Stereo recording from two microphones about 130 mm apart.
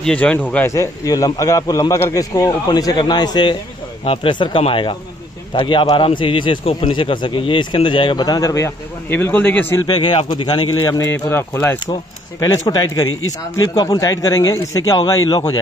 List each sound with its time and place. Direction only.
0.0 s speech: 10° left (ahead or behind)
0.7 s a man's voice: 25° left (ahead or behind)
4.0 s speech: 45° left (ahead or behind); by 9.8 s 15° left (ahead or behind)
10.0 s speech: 40° left (ahead or behind)
10.9 s speech: 25° left (ahead or behind)
12.4 s a man's voice: 30° left (ahead or behind)